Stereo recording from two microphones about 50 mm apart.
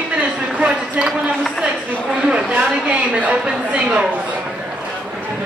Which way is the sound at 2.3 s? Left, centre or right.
Right.